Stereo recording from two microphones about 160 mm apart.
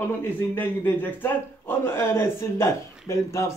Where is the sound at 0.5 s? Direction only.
10° left (ahead or behind).